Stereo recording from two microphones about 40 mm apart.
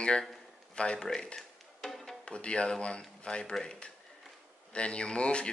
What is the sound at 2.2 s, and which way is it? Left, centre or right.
Speech, left.